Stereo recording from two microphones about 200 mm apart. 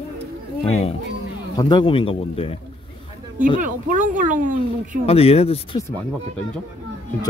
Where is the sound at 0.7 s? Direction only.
30° left (ahead or behind).